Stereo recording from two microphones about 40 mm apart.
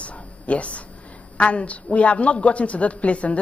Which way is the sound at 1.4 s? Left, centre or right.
Left.